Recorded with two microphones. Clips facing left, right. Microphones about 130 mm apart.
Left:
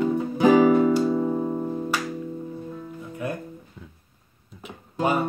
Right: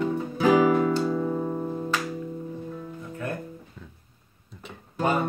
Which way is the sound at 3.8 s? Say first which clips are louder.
Left 1 dB; 5° left (ahead or behind).